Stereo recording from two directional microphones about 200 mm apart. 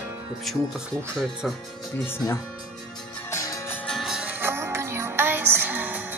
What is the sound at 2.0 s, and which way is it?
Speech, 10° left (ahead or behind).